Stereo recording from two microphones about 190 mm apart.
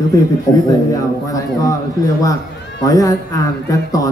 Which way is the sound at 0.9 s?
20° left (ahead or behind).